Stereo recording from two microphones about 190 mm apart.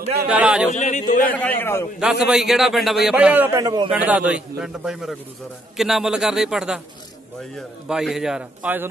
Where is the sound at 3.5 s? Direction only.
20° right (ahead or behind).